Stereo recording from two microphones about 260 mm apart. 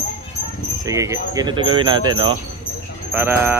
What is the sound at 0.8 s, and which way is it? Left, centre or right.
Speech, centre.